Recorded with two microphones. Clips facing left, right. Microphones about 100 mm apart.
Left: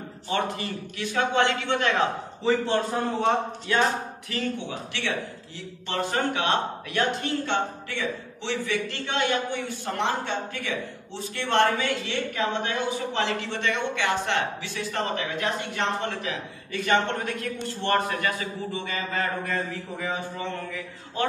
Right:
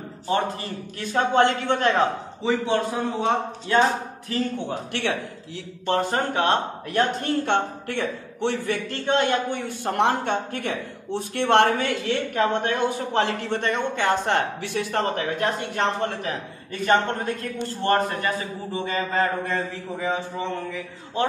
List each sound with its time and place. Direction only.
0.3 s a man's voice: 40° right (ahead or behind)
2.4 s a man's voice: 10° right (ahead or behind)
4.6 s a man's voice: 50° right (ahead or behind)
7.4 s a man's voice: 55° right (ahead or behind); by 21.3 s 25° right (ahead or behind)